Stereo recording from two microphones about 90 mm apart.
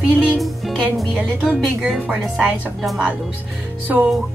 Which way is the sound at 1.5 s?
Centre (ahead or behind).